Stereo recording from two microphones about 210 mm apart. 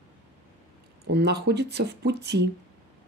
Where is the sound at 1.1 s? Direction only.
50° right (ahead or behind).